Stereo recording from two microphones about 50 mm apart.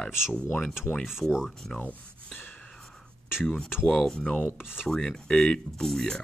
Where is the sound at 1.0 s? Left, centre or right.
Centre.